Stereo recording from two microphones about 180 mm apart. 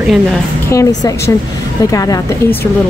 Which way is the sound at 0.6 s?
15° left (ahead or behind).